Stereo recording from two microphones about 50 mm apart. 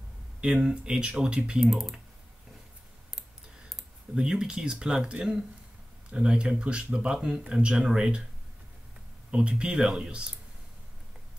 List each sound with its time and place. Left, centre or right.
0.7 s speech: centre
1.6 s speech: centre
4.1 s speech: centre
9.3 s speech: centre